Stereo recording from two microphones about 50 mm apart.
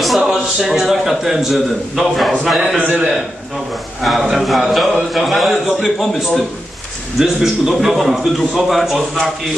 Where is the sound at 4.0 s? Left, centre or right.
Centre.